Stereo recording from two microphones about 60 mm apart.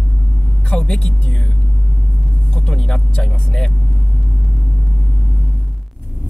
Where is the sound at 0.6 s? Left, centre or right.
Centre.